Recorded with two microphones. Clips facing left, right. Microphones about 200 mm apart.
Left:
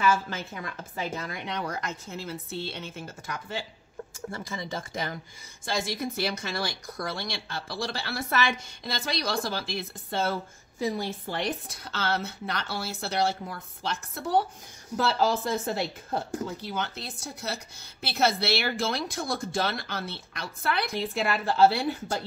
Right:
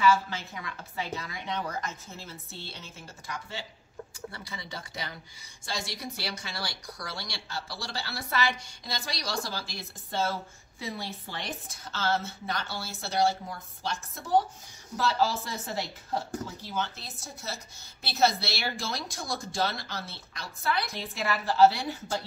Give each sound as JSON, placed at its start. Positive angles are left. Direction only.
{"t": 0.0, "sound": "a woman's voice", "side_deg": 50}
{"t": 10.8, "sound": "speech", "side_deg": 45}
{"t": 15.1, "sound": "speech", "side_deg": 55}